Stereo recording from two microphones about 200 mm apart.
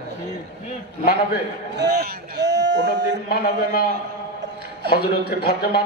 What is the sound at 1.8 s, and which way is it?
A man's voice, 55° right (ahead or behind).